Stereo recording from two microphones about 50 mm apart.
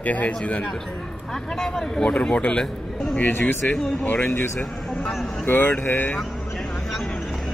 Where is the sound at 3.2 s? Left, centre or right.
Left.